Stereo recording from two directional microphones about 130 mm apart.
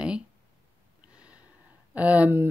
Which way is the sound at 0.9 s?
10° right (ahead or behind).